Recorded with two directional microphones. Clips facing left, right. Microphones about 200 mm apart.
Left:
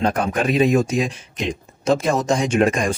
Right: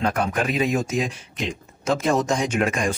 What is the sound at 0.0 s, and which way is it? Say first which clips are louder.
Speech: left 3 dB; 35° left (ahead or behind).